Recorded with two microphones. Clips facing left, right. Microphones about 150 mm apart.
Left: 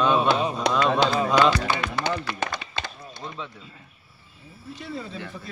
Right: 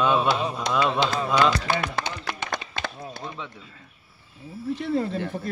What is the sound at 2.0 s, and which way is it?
Speech, 60° left (ahead or behind).